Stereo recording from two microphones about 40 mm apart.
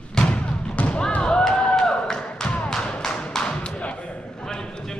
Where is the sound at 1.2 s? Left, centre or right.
Left.